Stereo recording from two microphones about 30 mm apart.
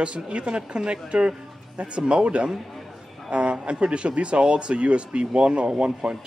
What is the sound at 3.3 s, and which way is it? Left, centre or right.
A man's voice, right.